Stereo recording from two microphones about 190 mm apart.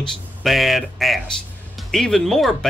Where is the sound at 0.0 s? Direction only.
Centre (ahead or behind).